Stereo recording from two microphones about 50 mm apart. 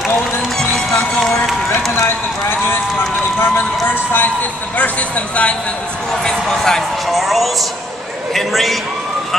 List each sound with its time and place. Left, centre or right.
0.6 s music: centre
1.9 s clip-clop: left
3.3 s a sound: left
4.7 s a man's voice: left
6.2 s speech: centre